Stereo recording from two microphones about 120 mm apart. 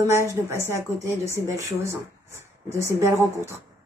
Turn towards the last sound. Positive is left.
turn(degrees=-25)  # may be behind; listen again after turning